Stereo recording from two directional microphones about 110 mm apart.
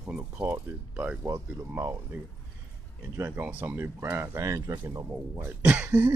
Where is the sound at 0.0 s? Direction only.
15° right (ahead or behind).